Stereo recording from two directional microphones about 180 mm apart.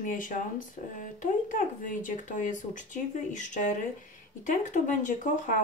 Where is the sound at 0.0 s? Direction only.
50° left (ahead or behind).